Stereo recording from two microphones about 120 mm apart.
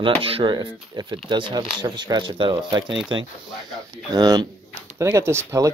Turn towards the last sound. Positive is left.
turn(degrees=-20)  # may be behind; listen again after turning